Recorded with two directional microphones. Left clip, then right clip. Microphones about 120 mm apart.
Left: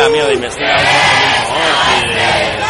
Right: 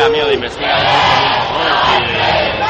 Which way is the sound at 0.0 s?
70° left (ahead or behind).